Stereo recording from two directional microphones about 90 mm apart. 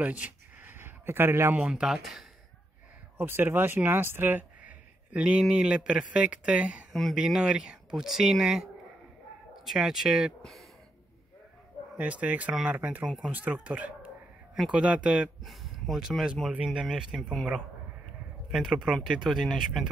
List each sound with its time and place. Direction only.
0.0 s a sound: 15° right (ahead or behind)
1.5 s speech: 10° right (ahead or behind)
3.2 s speech: 25° right (ahead or behind)
6.9 s speech: centre (ahead or behind)
9.7 s speech: 5° right (ahead or behind)
12.0 s speech: 15° right (ahead or behind)
13.3 s speech: 20° right (ahead or behind)
17.2 s speech: 10° left (ahead or behind)
18.5 s speech: 5° right (ahead or behind)